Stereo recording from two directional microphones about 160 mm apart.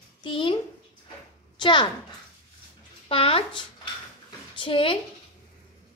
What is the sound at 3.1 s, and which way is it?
A woman's voice, 35° left (ahead or behind).